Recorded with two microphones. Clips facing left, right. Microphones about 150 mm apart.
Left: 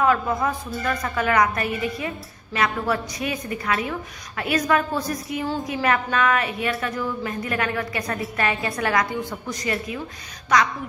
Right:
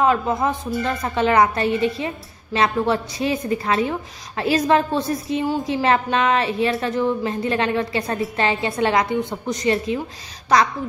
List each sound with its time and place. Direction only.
0.0 s a woman's voice: 25° right (ahead or behind)